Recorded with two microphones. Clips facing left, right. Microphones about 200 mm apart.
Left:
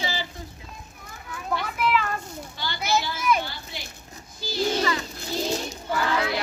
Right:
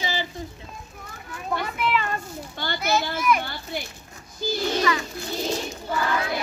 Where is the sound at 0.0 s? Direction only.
20° right (ahead or behind).